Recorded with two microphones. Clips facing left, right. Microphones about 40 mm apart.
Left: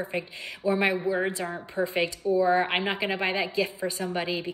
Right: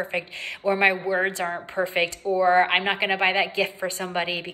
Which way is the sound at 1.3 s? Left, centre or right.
Right.